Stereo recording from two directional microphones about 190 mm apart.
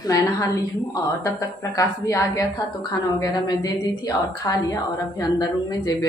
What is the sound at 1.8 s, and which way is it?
A woman's voice, 15° left (ahead or behind).